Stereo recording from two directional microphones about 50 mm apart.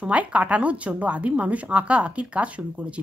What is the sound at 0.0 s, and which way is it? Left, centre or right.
A woman's voice, right.